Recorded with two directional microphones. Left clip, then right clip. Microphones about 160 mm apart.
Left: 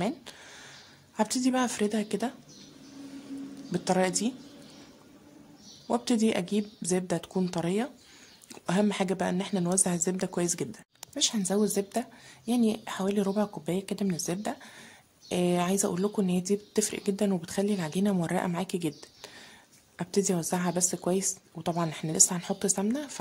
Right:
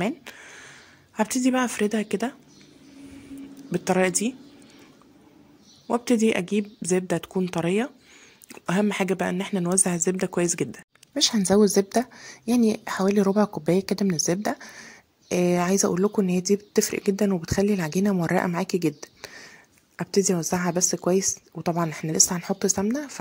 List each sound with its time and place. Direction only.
0.0 s a sound: 20° right (ahead or behind)
3.7 s a woman's voice: 20° right (ahead or behind)
5.9 s a woman's voice: 20° right (ahead or behind)
11.1 s a woman's voice: 40° right (ahead or behind); by 19.3 s 25° right (ahead or behind)
20.4 s a woman's voice: 25° right (ahead or behind)